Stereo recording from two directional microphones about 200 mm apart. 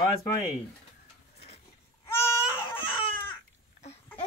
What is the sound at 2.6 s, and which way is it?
Baby cry, 10° left (ahead or behind).